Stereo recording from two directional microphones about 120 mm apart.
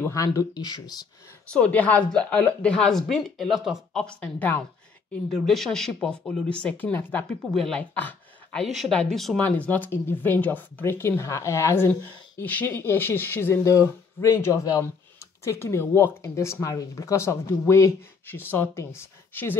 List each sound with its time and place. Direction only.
0.0 s speech: 25° left (ahead or behind)
1.5 s a woman's voice: 10° left (ahead or behind)
5.1 s a woman's voice: 5° left (ahead or behind)
8.6 s speech: centre (ahead or behind)
9.4 s speech: 15° left (ahead or behind)